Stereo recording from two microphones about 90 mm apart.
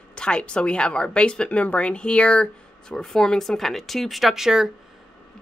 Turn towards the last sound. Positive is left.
turn(degrees=-5)  # may be behind; listen again after turning